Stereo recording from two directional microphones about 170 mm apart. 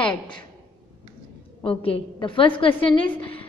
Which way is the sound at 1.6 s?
35° left (ahead or behind).